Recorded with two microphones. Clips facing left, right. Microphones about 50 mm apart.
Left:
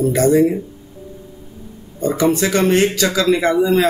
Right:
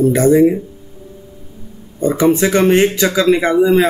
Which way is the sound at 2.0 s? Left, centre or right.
Right.